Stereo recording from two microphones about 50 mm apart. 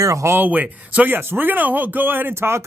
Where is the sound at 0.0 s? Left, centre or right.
Right.